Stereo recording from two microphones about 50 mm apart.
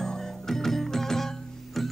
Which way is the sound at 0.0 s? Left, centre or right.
Centre.